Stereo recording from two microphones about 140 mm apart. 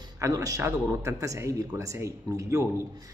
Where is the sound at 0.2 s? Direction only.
25° right (ahead or behind).